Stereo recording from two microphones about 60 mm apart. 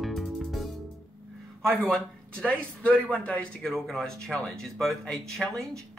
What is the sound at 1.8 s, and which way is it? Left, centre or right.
Speech, centre.